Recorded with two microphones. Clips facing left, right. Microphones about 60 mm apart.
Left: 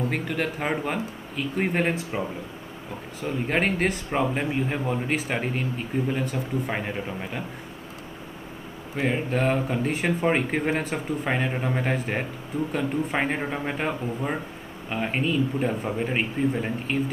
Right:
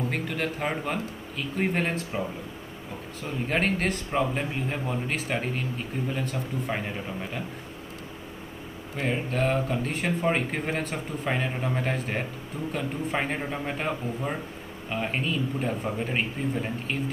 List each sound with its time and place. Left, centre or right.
0.1 s speech: centre
3.4 s speech: centre
8.9 s speech: centre